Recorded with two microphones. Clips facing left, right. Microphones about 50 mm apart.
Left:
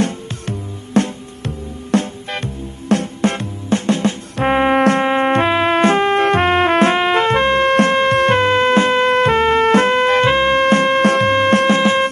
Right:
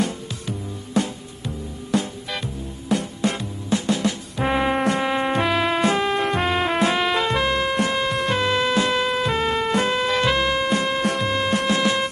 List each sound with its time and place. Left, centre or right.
0.0 s music: left
4.7 s insect: left
5.7 s music: left
7.6 s music: left
8.4 s music: left
10.6 s music: left